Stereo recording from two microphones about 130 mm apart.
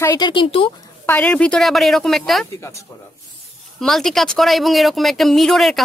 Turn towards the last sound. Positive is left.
turn(degrees=0)  # may be behind; listen again after turning